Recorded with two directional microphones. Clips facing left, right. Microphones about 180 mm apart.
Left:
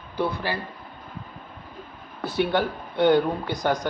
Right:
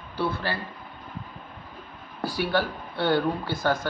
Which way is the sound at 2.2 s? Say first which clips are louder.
Left 2 dB; 20° left (ahead or behind).